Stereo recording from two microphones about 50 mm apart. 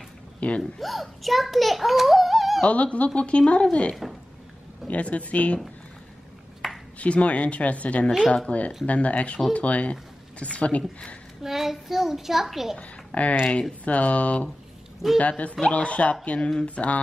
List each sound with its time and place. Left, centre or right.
0.4 s speech: left
0.7 s a child's voice: centre
2.6 s speech: left
3.9 s a child's voice: centre
4.8 s speech: left
6.6 s a sound: centre
7.0 s speech: left
11.4 s a child's voice: centre
12.7 s speech: left